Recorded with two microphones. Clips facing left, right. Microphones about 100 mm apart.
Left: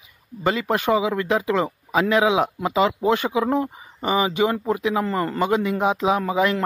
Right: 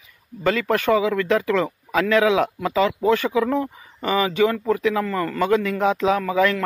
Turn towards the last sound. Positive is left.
turn(degrees=20)  # may be behind; listen again after turning